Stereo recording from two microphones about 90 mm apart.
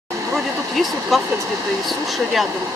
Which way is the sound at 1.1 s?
Centre (ahead or behind).